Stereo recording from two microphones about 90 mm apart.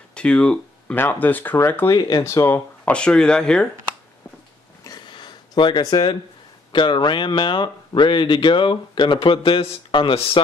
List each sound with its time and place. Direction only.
0.1 s a sound: 10° left (ahead or behind)
0.9 s speech: 20° left (ahead or behind)
2.0 s speech: 50° left (ahead or behind)
2.2 s speech: 25° left (ahead or behind); by 3.6 s 10° left (ahead or behind)
4.8 s a sound: 55° left (ahead or behind)
6.7 s speech: 60° left (ahead or behind)